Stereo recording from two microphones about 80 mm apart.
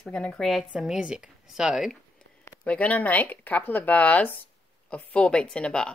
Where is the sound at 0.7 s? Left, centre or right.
Centre.